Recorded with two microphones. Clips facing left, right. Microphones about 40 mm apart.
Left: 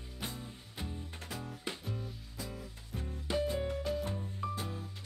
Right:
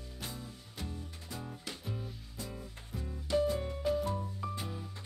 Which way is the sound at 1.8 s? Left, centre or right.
Centre.